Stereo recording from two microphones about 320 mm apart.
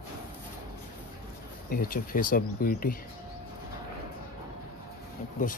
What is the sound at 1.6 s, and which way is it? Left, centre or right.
Speech, left.